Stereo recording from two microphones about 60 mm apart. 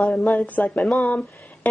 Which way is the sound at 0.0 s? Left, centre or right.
Centre.